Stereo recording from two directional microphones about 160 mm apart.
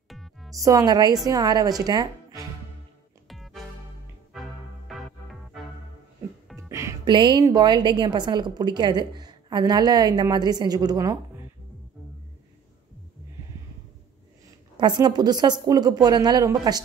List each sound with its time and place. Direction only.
0.1 s music: centre (ahead or behind)
0.6 s a woman's voice: 20° right (ahead or behind)
3.3 s music: centre (ahead or behind)
4.8 s music: centre (ahead or behind)
6.7 s music: 15° right (ahead or behind)
7.1 s a woman's voice: 30° right (ahead or behind)
14.8 s a woman's voice: 30° right (ahead or behind)